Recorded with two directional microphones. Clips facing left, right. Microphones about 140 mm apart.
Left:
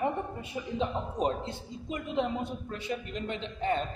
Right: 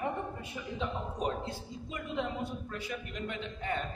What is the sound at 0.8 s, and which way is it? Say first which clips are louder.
A man's voice: left 4 dB; 25° left (ahead or behind).